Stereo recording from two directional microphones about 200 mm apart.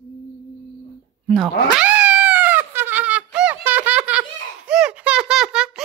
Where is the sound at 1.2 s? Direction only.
Centre (ahead or behind).